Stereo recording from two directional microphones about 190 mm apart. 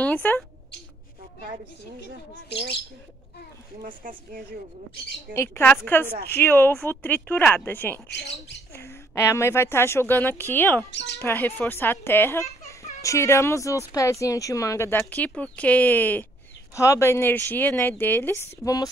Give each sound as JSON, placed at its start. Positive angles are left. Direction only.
{"t": 0.0, "sound": "speech", "side_deg": 10}
{"t": 3.8, "sound": "speech", "side_deg": -45}
{"t": 5.3, "sound": "speech", "side_deg": 15}